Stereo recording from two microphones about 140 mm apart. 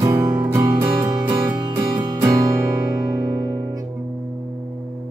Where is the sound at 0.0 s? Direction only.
20° right (ahead or behind).